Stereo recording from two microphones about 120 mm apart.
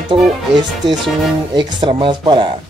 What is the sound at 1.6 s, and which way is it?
Speech, 40° right (ahead or behind).